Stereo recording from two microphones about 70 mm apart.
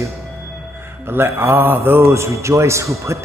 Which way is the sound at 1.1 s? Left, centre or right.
Right.